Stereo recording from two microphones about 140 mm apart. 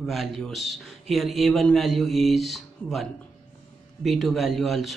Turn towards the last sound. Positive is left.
turn(degrees=0)  # may be behind; listen again after turning